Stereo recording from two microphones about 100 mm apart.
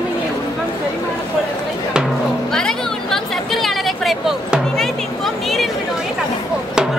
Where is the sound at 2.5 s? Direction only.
5° left (ahead or behind).